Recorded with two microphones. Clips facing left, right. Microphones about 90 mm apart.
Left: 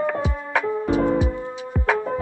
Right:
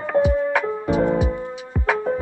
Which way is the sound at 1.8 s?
Centre (ahead or behind).